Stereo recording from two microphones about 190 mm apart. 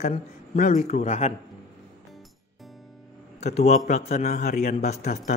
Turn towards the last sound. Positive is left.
turn(degrees=35)  # may be behind; listen again after turning